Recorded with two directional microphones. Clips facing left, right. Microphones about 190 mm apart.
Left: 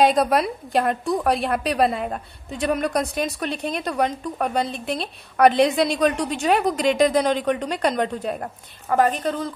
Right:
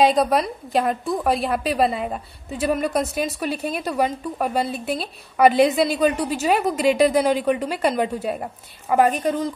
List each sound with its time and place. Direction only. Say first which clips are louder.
0.0 s a woman's voice: even; centre (ahead or behind)